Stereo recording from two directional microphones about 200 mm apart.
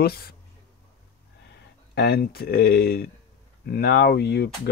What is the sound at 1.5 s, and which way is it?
Speech, 55° left (ahead or behind).